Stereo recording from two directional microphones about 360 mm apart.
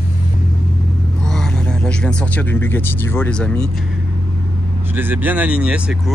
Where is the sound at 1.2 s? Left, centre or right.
Centre.